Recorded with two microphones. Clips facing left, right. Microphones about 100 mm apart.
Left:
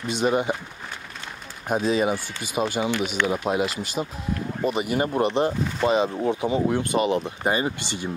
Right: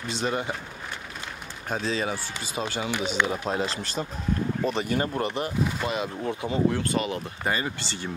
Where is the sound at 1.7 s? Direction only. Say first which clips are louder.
Left 6 dB; 15° left (ahead or behind).